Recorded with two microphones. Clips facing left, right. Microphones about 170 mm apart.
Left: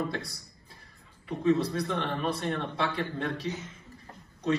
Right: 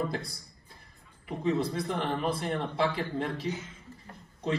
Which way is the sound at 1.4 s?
25° right (ahead or behind).